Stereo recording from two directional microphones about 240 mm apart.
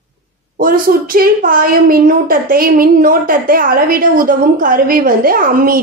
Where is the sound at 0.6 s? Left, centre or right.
Right.